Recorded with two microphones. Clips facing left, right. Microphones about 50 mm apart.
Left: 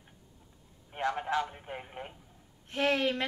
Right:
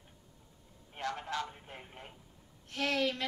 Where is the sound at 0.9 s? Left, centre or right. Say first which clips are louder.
Left 6 dB; left.